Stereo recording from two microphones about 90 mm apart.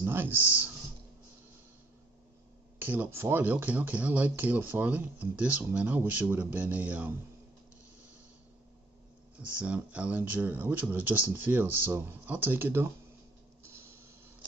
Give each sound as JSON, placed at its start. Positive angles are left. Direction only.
{"t": 0.0, "sound": "speech", "side_deg": -25}
{"t": 2.8, "sound": "speech", "side_deg": -20}
{"t": 9.4, "sound": "speech", "side_deg": -15}
{"t": 13.6, "sound": "printer", "side_deg": -30}